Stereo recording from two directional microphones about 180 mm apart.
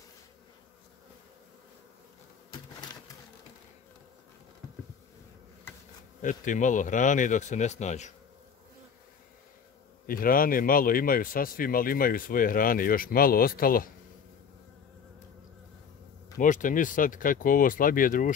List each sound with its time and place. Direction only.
6.2 s speech: 45° left (ahead or behind)
10.0 s speech: 50° left (ahead or behind)
16.3 s speech: 45° left (ahead or behind)